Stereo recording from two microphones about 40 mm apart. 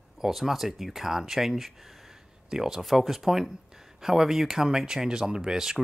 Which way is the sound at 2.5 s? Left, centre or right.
Centre.